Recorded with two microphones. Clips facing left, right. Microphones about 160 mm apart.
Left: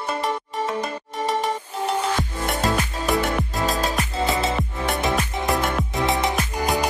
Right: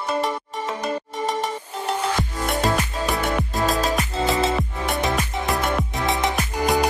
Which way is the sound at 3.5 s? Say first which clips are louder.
Right 2 dB; centre (ahead or behind).